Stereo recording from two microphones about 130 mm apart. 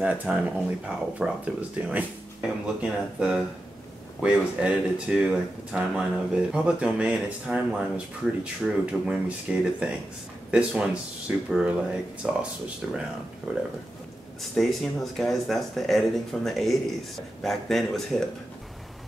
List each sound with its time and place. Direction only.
0.0 s speech: 10° right (ahead or behind)
8.6 s speech: 5° right (ahead or behind)
14.5 s speech: centre (ahead or behind)